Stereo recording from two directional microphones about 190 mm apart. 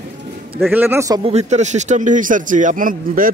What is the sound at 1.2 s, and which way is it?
Speech, 35° right (ahead or behind).